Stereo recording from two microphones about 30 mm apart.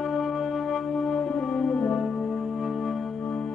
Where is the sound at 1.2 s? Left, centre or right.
Left.